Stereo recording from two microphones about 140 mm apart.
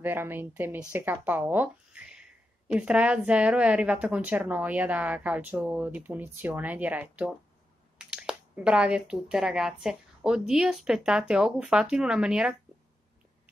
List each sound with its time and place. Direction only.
0.0 s a woman's voice: 15° right (ahead or behind)